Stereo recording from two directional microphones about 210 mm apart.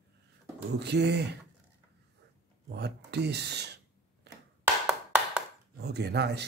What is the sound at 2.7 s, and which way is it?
Speech, 55° right (ahead or behind).